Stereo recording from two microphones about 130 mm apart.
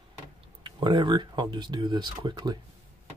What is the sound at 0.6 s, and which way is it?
Speech, 35° right (ahead or behind).